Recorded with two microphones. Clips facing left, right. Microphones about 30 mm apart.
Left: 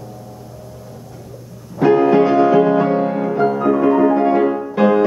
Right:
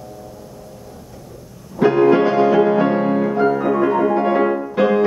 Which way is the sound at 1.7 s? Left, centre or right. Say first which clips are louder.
Left 1 dB; centre.